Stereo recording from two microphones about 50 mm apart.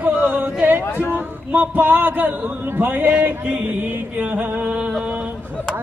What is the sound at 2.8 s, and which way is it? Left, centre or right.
Speech, right.